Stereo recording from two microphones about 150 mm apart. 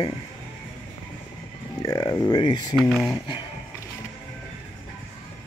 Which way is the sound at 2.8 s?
Centre (ahead or behind).